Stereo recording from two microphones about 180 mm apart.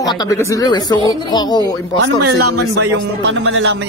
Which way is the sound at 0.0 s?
20° left (ahead or behind).